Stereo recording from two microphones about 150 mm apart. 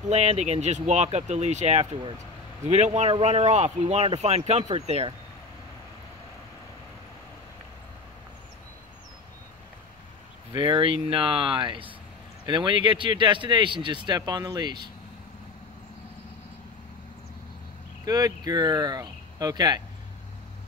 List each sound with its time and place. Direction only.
0.1 s speech: 50° right (ahead or behind)
10.5 s speech: 35° right (ahead or behind)
18.0 s speech: 25° right (ahead or behind)